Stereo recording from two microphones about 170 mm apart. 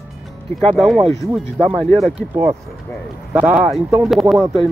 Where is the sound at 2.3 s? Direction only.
15° right (ahead or behind).